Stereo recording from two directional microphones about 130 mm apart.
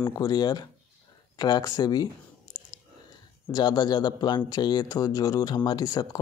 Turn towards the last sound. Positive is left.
turn(degrees=30)  # may be behind; listen again after turning